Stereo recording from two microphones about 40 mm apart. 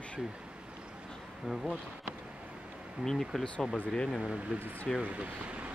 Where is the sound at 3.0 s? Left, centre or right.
Centre.